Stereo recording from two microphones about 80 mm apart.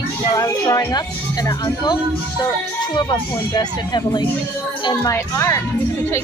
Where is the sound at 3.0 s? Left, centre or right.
Left.